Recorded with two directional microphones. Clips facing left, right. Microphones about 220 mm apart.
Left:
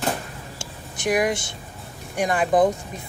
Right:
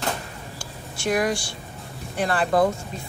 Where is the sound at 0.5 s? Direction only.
20° left (ahead or behind).